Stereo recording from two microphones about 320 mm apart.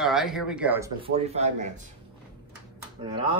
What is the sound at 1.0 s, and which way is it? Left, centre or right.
Speech, centre.